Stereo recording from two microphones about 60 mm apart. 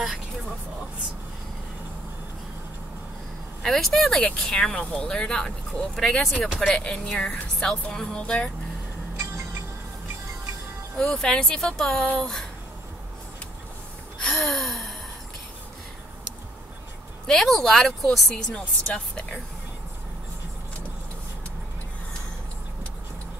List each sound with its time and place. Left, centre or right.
3.6 s a woman's voice: centre
6.7 s a woman's voice: centre
11.0 s a woman's voice: centre
14.2 s gasp: centre
17.3 s a woman's voice: centre